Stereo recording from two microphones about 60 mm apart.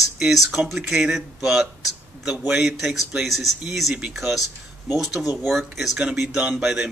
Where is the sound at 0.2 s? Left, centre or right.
Centre.